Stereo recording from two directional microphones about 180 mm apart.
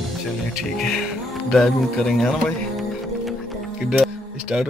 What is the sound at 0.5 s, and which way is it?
Speech, centre (ahead or behind).